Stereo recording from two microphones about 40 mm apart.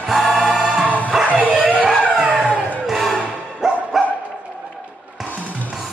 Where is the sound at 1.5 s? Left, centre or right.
Centre.